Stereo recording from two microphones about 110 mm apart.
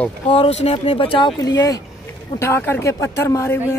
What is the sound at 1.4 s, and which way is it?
Speech, 30° left (ahead or behind).